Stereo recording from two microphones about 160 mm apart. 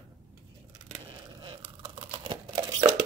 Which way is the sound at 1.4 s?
30° right (ahead or behind).